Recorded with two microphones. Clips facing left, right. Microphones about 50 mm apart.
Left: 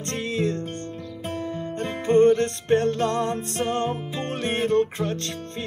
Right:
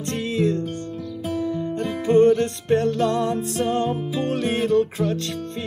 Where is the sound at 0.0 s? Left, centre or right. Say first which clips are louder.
Right 3 dB; left.